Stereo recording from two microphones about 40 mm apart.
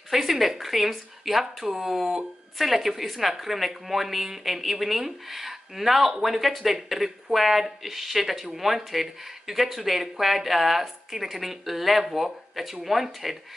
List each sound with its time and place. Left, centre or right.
0.1 s a woman's voice: centre